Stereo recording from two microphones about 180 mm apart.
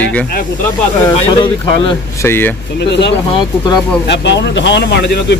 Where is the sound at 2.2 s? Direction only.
10° left (ahead or behind).